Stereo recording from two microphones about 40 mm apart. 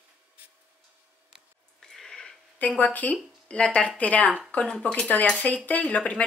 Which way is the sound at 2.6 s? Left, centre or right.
Left.